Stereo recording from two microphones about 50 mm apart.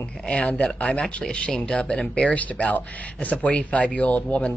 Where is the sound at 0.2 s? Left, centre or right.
Centre.